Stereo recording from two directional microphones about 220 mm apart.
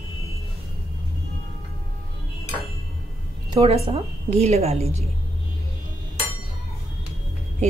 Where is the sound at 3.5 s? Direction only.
25° right (ahead or behind).